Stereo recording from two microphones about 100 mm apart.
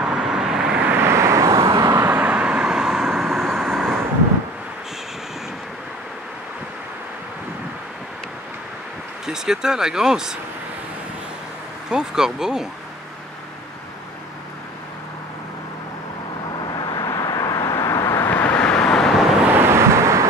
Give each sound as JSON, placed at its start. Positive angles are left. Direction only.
{"t": 0.0, "sound": "vehicle", "side_deg": -5}
{"t": 9.2, "sound": "speech", "side_deg": -5}
{"t": 11.9, "sound": "speech", "side_deg": -5}
{"t": 16.7, "sound": "vehicle", "side_deg": 45}
{"t": 19.5, "sound": "vehicle", "side_deg": -25}